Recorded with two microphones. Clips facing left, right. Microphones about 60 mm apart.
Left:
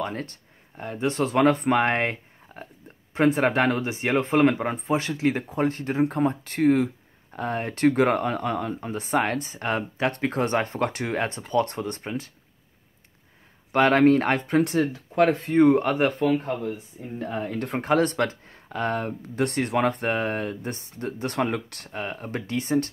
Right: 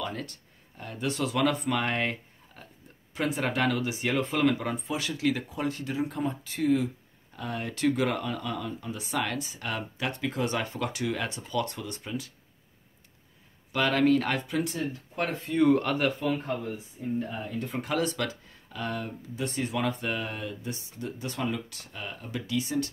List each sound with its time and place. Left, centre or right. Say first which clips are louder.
0.0 s speech: left 4 dB; left
10.1 s speech: left 4 dB; left
13.7 s speech: left 6 dB; left
14.6 s speech: left 8 dB; left
15.5 s speech: left 3 dB; left
15.8 s speech: left 5 dB; left
16.1 s speech: left 5 dB; left
17.3 s speech: left 6 dB; left
17.7 s speech: left 8 dB; left